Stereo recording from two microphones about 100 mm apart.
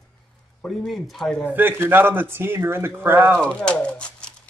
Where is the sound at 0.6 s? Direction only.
Centre (ahead or behind).